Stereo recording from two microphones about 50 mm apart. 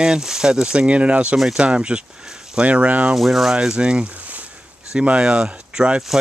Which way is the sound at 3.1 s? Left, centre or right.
Centre.